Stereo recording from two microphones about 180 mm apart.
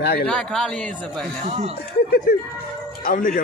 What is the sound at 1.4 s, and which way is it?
Speech, 40° right (ahead or behind).